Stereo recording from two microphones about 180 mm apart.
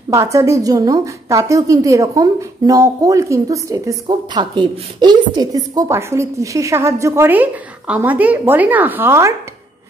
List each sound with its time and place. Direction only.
0.1 s a woman's voice: 15° right (ahead or behind)